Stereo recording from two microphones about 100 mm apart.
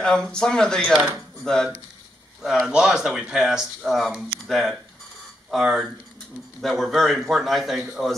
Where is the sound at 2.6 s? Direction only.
5° right (ahead or behind).